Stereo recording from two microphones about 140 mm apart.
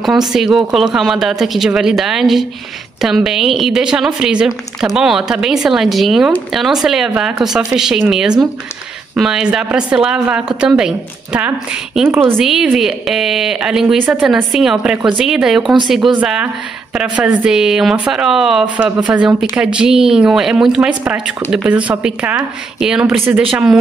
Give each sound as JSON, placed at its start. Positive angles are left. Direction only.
{"t": 0.0, "sound": "a woman's voice", "side_deg": 0}
{"t": 12.4, "sound": "a woman's voice", "side_deg": 0}